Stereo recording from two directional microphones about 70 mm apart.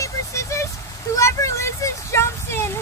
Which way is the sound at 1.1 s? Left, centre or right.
Left.